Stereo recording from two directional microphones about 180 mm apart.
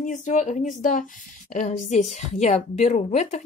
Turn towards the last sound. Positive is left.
turn(degrees=40)  # may be behind; listen again after turning